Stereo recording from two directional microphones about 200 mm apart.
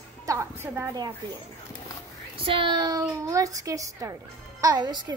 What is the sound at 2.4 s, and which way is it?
A child's voice, 25° right (ahead or behind).